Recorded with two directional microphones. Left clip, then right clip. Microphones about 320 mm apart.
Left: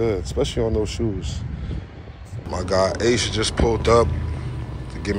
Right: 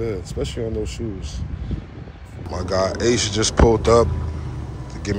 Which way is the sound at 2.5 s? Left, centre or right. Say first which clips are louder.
Left 1 dB; centre.